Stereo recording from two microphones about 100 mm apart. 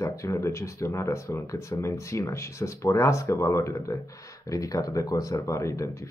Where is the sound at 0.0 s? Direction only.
30° left (ahead or behind).